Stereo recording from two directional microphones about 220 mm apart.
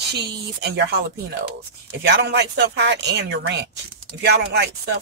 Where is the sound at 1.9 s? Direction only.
50° right (ahead or behind).